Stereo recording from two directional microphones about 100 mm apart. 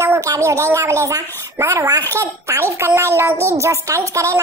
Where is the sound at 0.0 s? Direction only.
35° right (ahead or behind).